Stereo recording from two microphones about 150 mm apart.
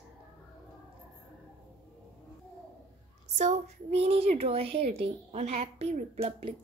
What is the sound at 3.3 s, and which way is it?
Speech, 50° right (ahead or behind).